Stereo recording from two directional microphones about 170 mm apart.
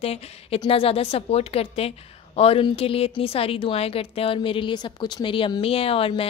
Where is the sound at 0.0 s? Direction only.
35° left (ahead or behind).